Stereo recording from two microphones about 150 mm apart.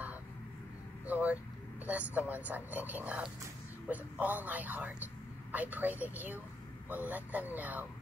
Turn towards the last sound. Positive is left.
turn(degrees=-10)  # may be behind; listen again after turning